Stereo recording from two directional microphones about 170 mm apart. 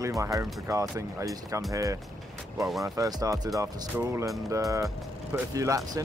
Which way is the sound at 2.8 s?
20° right (ahead or behind).